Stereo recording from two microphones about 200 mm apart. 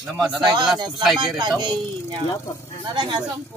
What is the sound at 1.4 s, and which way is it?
A child's voice, 20° right (ahead or behind).